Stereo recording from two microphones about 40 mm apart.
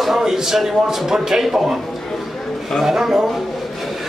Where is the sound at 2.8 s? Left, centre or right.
Centre.